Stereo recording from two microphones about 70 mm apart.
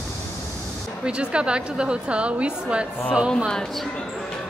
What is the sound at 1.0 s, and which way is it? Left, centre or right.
A woman's voice, centre.